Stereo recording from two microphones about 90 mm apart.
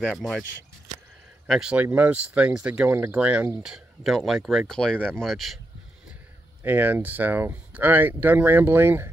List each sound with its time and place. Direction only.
0.1 s speech: centre (ahead or behind)
1.5 s speech: 10° right (ahead or behind)
2.9 s speech: 25° right (ahead or behind); by 5.6 s centre (ahead or behind)
6.6 s speech: 20° right (ahead or behind)